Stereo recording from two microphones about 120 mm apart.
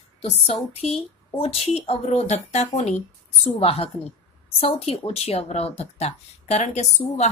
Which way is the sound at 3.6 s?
50° left (ahead or behind).